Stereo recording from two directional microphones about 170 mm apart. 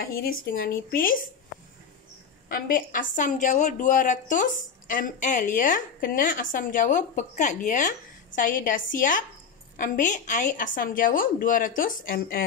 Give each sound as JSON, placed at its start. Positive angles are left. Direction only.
{"t": 0.0, "sound": "speech", "side_deg": 60}
{"t": 2.5, "sound": "a woman's voice", "side_deg": 55}